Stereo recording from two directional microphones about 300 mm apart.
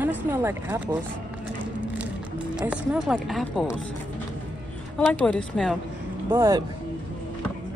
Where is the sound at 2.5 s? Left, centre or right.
Centre.